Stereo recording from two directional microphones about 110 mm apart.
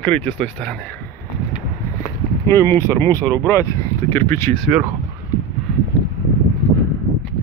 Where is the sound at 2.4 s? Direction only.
25° left (ahead or behind).